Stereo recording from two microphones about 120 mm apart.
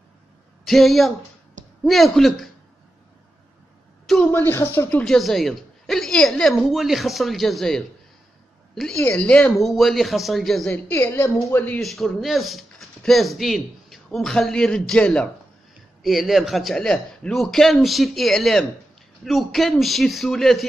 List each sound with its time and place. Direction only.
0.7 s speech: centre (ahead or behind)
4.3 s speech: 20° left (ahead or behind); by 7.8 s 5° left (ahead or behind)
9.0 s speech: 10° left (ahead or behind)
10.7 s a woman's voice: 15° left (ahead or behind)
11.8 s speech: centre (ahead or behind)